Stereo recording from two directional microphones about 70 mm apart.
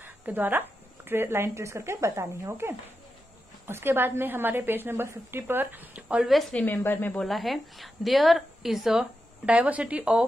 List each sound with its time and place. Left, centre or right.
0.0 s a woman's voice: right
6.1 s a woman's voice: centre
6.6 s speech: left
7.2 s a woman's voice: centre
9.5 s speech: centre